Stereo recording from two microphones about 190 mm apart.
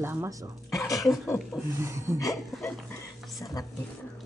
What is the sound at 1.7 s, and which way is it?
Speech, 15° right (ahead or behind).